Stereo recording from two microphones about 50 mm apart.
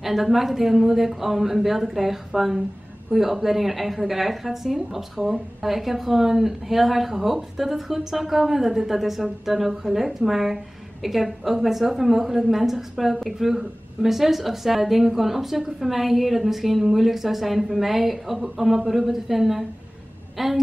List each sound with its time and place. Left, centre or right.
0.0 s a woman's voice: centre